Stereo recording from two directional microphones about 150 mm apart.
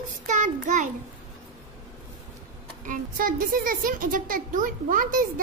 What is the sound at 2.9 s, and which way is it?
Speech, 70° right (ahead or behind).